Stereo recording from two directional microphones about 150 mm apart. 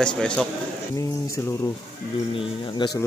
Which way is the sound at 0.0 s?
5° left (ahead or behind).